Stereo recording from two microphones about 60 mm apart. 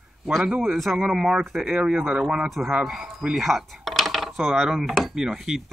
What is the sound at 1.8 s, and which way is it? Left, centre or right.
Speech, centre.